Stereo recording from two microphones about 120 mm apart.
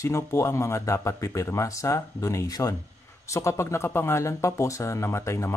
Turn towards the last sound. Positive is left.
turn(degrees=25)  # may be behind; listen again after turning